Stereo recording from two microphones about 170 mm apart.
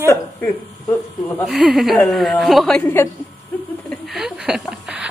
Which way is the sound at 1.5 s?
Centre (ahead or behind).